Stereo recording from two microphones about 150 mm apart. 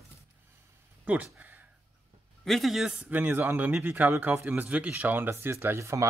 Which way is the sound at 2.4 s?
Centre (ahead or behind).